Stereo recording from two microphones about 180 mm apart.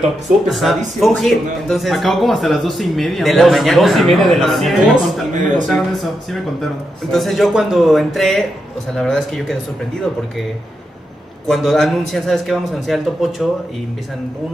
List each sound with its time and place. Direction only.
0.5 s speech: centre (ahead or behind)
5.3 s speech: 45° right (ahead or behind)
6.6 s speech: centre (ahead or behind)
11.4 s speech: centre (ahead or behind)